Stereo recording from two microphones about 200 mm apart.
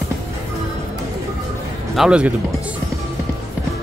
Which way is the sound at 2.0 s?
5° right (ahead or behind).